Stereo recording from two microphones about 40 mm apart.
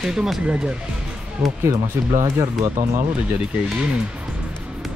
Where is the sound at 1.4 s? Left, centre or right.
Right.